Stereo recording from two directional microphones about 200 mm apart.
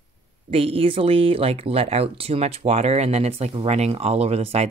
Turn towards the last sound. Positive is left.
turn(degrees=-30)  # may be behind; listen again after turning